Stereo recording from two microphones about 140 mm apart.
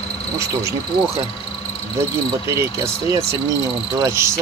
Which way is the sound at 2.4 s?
20° right (ahead or behind).